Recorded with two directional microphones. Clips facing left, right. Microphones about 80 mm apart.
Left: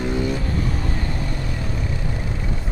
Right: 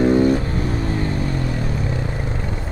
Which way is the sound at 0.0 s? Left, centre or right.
Right.